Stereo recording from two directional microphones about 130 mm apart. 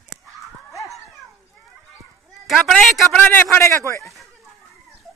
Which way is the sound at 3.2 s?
15° left (ahead or behind).